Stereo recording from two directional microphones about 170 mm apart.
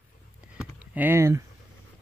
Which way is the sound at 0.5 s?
10° right (ahead or behind).